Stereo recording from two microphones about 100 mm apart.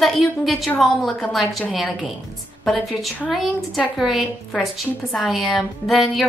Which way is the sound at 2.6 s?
Centre (ahead or behind).